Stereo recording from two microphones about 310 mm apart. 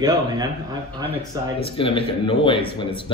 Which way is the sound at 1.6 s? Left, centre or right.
Centre.